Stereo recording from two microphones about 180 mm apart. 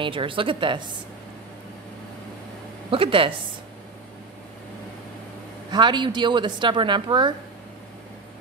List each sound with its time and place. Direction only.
0.0 s a woman's voice: 30° right (ahead or behind)
2.9 s a woman's voice: 30° right (ahead or behind)
5.7 s a woman's voice: 25° right (ahead or behind)